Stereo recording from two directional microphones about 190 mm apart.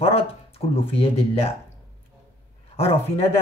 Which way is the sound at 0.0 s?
30° left (ahead or behind).